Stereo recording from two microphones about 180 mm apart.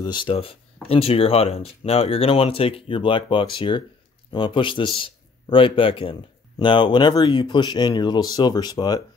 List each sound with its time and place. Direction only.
0.0 s a man's voice: 25° left (ahead or behind)